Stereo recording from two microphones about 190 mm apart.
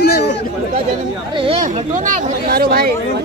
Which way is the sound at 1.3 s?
30° right (ahead or behind).